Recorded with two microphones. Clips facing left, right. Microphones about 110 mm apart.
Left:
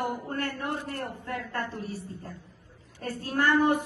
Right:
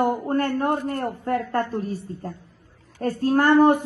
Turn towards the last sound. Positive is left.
turn(degrees=-45)  # may be behind; listen again after turning